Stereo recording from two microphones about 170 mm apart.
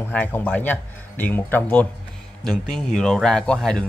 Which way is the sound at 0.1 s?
10° left (ahead or behind).